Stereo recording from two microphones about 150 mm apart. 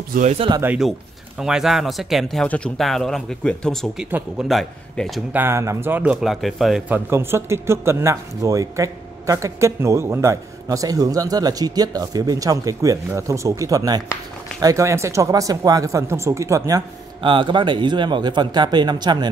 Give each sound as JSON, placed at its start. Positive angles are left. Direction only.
{"t": 0.1, "sound": "speech", "side_deg": -55}
{"t": 1.4, "sound": "speech", "side_deg": -5}
{"t": 5.3, "sound": "speech", "side_deg": -15}
{"t": 6.2, "sound": "speech", "side_deg": 0}
{"t": 6.9, "sound": "speech", "side_deg": -15}
{"t": 17.2, "sound": "speech", "side_deg": -35}